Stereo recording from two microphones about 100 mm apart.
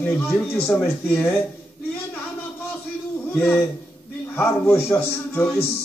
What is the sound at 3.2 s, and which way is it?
A man's voice, 20° left (ahead or behind).